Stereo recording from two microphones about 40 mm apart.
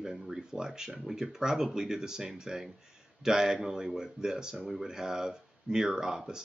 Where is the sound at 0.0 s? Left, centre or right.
Centre.